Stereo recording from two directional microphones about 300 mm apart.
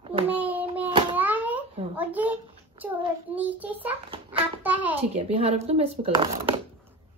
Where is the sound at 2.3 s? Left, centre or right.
Centre.